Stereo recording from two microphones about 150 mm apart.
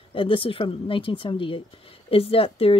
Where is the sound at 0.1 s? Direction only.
35° left (ahead or behind).